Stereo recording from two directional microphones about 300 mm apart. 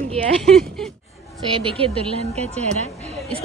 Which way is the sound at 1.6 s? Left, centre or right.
Centre.